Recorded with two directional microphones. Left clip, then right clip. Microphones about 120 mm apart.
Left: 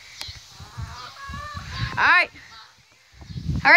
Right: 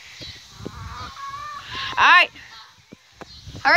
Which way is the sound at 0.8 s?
20° left (ahead or behind).